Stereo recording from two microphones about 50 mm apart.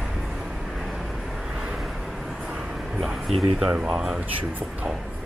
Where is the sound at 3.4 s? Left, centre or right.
Centre.